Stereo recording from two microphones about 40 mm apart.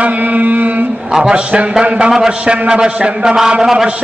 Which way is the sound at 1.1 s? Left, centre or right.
Right.